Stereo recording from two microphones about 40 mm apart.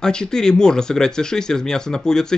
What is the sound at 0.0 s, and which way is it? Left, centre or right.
Speech, centre.